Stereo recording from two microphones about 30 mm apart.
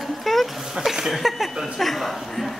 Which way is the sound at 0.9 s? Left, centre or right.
Centre.